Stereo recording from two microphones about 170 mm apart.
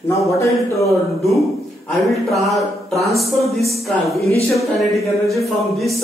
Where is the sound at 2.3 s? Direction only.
Centre (ahead or behind).